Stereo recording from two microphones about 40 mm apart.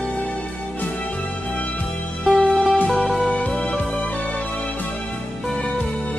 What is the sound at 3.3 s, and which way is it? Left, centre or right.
Music, left.